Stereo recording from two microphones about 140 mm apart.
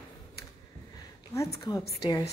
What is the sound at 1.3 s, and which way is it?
Speech, 20° left (ahead or behind).